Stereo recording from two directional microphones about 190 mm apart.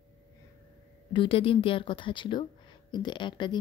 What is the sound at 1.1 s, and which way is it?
A woman's voice, 25° left (ahead or behind).